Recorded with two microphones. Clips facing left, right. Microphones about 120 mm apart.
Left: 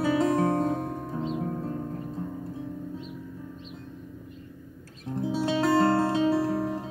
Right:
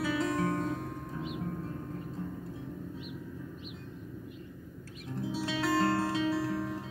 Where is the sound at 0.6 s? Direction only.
45° left (ahead or behind).